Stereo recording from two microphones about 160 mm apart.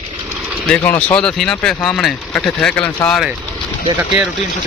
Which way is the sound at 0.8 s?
10° left (ahead or behind).